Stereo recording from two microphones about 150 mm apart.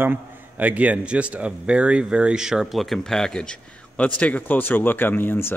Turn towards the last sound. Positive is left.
turn(degrees=15)  # may be behind; listen again after turning